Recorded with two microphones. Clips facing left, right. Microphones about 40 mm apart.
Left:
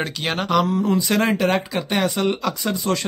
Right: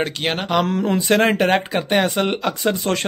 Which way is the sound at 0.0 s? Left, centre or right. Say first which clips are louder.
Right 2 dB; right.